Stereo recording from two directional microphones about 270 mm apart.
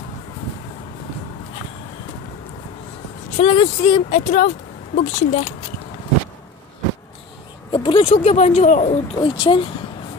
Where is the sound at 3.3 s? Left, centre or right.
Centre.